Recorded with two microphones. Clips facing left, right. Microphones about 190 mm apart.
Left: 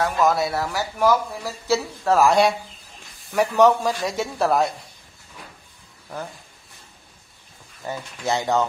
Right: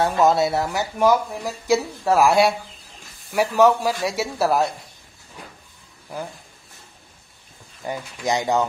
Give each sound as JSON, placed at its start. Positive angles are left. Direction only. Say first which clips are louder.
{"t": 0.0, "sound": "speech", "louder": "right 3 dB", "side_deg": -25}
{"t": 7.8, "sound": "speech", "louder": "right 2 dB", "side_deg": -15}